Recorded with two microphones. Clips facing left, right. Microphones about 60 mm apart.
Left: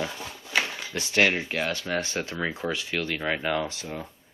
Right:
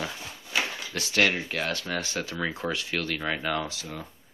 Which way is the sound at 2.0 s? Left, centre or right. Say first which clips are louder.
Left 1 dB; left.